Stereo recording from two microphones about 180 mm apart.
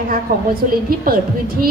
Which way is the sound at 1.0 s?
55° right (ahead or behind).